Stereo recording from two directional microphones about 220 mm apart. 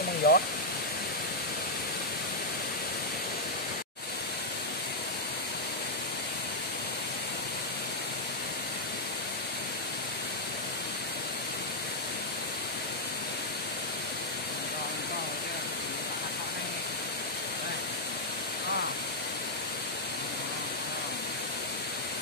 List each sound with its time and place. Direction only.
0.2 s speech: 45° left (ahead or behind)